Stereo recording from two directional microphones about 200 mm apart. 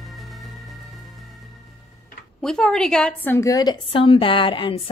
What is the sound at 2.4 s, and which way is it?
Speech, 5° left (ahead or behind).